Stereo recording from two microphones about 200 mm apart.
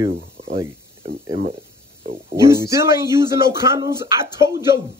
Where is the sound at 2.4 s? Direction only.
15° right (ahead or behind).